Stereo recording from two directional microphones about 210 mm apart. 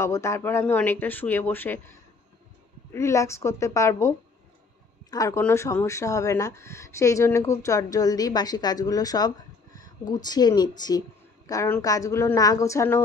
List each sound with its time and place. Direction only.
0.0 s speech: 15° left (ahead or behind)
5.1 s speech: 15° left (ahead or behind)